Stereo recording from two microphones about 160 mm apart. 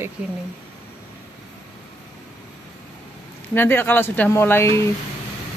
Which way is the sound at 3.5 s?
15° left (ahead or behind).